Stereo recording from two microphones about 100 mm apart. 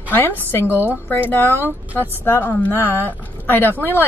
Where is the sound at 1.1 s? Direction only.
20° left (ahead or behind).